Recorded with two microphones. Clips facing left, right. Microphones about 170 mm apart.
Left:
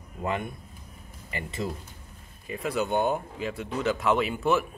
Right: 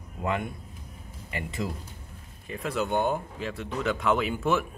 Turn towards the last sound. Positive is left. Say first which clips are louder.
# left 1 dB
turn(degrees=0)  # may be behind; listen again after turning